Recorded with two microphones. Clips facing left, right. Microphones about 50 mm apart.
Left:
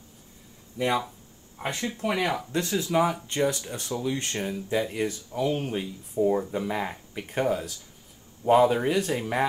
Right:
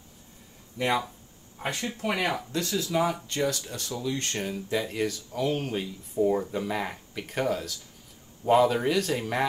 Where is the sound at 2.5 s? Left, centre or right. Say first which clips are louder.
Left 3 dB; left.